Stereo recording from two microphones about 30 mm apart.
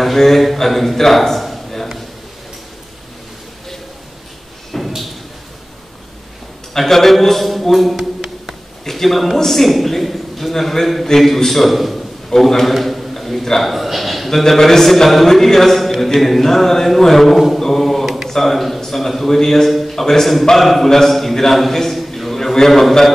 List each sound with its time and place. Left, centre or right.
0.0 s a man's voice: centre
4.7 s a sound: centre
6.7 s a sound: centre
8.8 s a man's voice: centre
12.4 s chant: centre
12.6 s a man's voice: centre
14.5 s chant: centre
17.6 s mantra: centre
18.0 s mantra: centre
18.3 s a man's voice: centre
18.9 s chant: centre
20.5 s a man's voice: centre
20.9 s chant: centre
21.7 s a sound: centre